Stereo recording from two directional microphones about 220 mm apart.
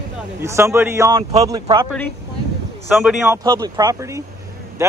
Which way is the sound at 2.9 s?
Centre (ahead or behind).